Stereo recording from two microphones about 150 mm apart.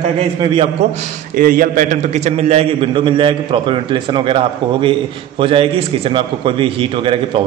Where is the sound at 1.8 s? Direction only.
50° right (ahead or behind).